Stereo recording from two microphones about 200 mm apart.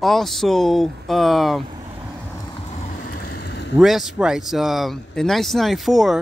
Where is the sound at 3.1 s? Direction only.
55° left (ahead or behind).